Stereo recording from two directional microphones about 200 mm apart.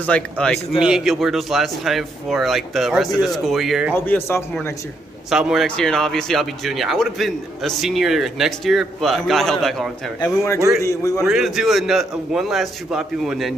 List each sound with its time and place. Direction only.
0.0 s speech: 5° left (ahead or behind)
3.9 s speech: 10° left (ahead or behind)
5.3 s speech: centre (ahead or behind)
10.2 s speech: 15° left (ahead or behind)
11.2 s speech: centre (ahead or behind)